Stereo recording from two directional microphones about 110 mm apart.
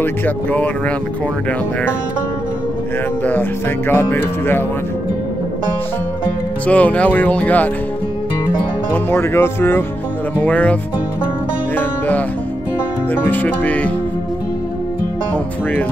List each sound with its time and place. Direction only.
0.0 s speech: 15° left (ahead or behind)
3.3 s speech: 20° left (ahead or behind)
6.7 s speech: 15° left (ahead or behind)
8.9 s speech: 20° left (ahead or behind)
13.1 s speech: 15° left (ahead or behind)